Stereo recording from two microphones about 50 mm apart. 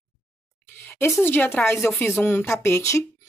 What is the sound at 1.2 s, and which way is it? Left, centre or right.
Speech, left.